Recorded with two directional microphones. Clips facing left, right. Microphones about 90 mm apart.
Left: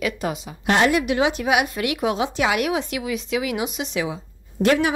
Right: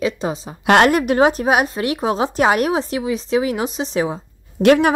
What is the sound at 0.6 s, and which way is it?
Speech, 70° right (ahead or behind).